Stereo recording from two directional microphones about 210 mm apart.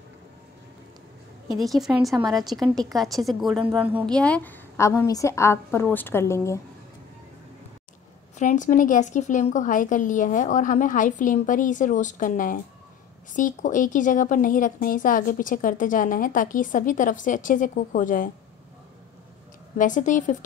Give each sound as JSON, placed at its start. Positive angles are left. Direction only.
{"t": 1.6, "sound": "a woman's voice", "side_deg": 0}
{"t": 8.4, "sound": "a woman's voice", "side_deg": 35}
{"t": 19.8, "sound": "a woman's voice", "side_deg": 35}